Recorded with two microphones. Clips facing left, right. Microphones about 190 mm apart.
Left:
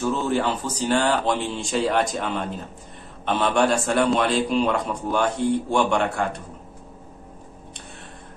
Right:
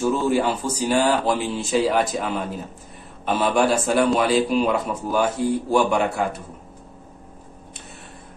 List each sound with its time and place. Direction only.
0.1 s a man's voice: 10° right (ahead or behind)